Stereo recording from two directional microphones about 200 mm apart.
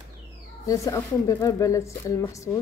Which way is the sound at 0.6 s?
15° left (ahead or behind).